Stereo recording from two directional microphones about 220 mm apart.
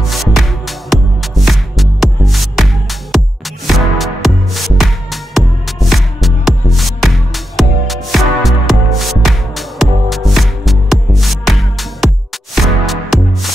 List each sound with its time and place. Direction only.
0.1 s music: centre (ahead or behind)